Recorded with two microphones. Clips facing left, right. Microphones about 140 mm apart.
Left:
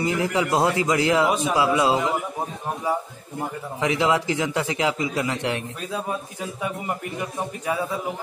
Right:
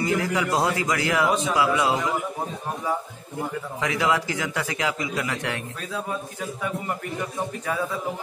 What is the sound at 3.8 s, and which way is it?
A man's voice, 25° left (ahead or behind).